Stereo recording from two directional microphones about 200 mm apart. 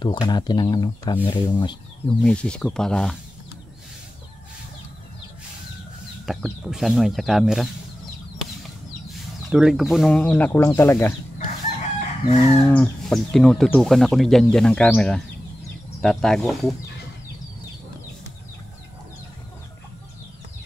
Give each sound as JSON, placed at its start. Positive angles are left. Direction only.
{"t": 0.0, "sound": "speech", "side_deg": 20}
{"t": 2.2, "sound": "speech", "side_deg": 5}
{"t": 6.2, "sound": "speech", "side_deg": 0}
{"t": 9.1, "sound": "speech", "side_deg": 0}
{"t": 12.0, "sound": "chicken", "side_deg": 35}
{"t": 12.6, "sound": "speech", "side_deg": 5}